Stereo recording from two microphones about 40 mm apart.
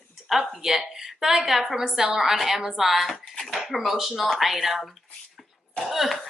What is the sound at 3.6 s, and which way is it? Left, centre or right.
Speech, centre.